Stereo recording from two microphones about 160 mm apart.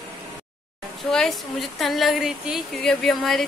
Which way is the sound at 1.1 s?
Centre (ahead or behind).